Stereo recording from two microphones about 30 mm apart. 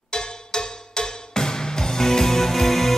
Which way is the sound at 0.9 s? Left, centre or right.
Left.